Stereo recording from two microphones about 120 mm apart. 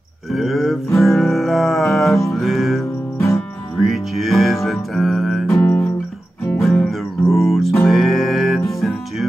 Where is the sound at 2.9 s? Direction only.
20° left (ahead or behind).